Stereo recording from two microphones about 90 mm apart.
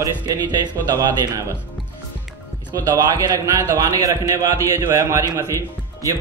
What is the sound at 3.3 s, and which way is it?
A man's voice, 35° right (ahead or behind).